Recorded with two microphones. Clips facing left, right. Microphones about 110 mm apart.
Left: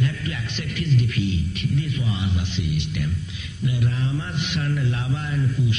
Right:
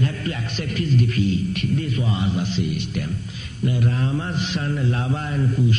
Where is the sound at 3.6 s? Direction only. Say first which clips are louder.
Right 3 dB; 45° right (ahead or behind).